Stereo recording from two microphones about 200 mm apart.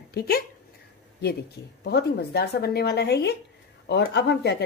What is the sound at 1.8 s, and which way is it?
Speech, 55° left (ahead or behind).